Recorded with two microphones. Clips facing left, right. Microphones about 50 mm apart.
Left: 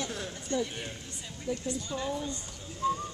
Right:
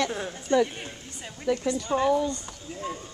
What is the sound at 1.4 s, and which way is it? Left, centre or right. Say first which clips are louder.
Speech: right 8 dB; right.